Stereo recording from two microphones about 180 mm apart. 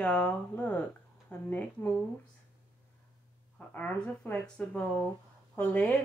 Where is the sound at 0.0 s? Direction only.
5° left (ahead or behind).